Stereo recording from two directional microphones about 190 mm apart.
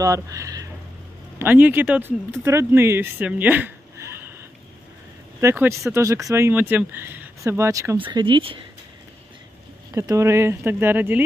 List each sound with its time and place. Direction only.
0.0 s speech: 15° right (ahead or behind)
5.4 s speech: 15° right (ahead or behind)
9.9 s speech: 15° right (ahead or behind)